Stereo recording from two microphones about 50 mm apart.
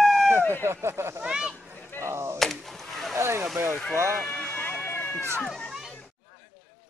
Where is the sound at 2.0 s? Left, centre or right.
Right.